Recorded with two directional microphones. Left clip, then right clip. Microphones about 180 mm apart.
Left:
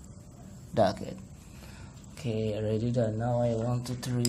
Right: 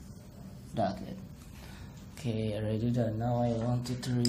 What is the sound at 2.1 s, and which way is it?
Speech, 10° left (ahead or behind).